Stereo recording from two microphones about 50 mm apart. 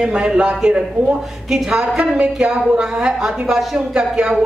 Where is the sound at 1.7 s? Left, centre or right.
Right.